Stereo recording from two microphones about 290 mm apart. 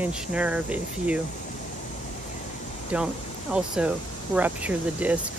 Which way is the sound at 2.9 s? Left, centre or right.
Centre.